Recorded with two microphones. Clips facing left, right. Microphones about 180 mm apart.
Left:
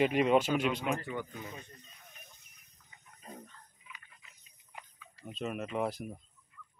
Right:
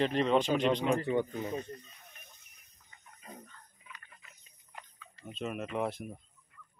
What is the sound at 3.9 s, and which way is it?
Pig, 55° right (ahead or behind).